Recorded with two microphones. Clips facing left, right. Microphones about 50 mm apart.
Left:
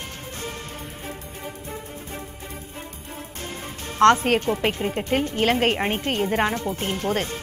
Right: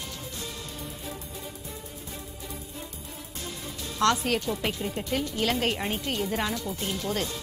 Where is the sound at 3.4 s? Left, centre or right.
Left.